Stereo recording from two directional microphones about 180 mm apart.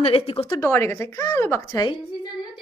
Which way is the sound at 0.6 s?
15° left (ahead or behind).